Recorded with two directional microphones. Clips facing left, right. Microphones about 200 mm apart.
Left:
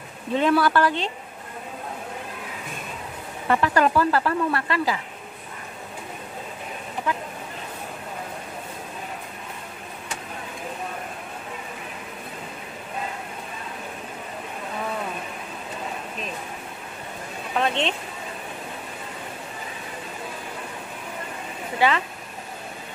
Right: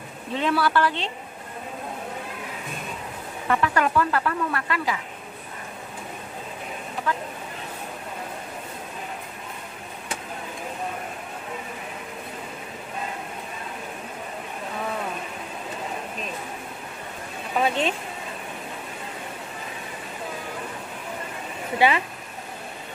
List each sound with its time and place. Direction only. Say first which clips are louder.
0.6 s a woman's voice: left 2 dB; 45° left (ahead or behind)
3.4 s speech: left 2 dB; 35° left (ahead or behind)
7.1 s speech: even; 15° left (ahead or behind)
17.6 s speech: right 1 dB; 5° right (ahead or behind)
21.7 s speech: right 1 dB; 15° right (ahead or behind)